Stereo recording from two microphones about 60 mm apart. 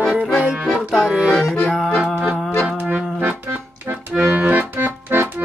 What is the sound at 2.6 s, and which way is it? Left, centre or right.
Music, right.